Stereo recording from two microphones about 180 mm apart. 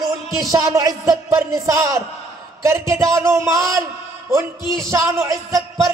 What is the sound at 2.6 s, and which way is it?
Speech, 15° right (ahead or behind).